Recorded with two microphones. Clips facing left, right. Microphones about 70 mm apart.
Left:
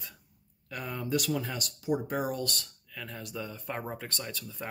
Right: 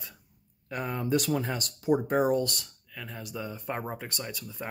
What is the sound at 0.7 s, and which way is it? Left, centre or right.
Speech, right.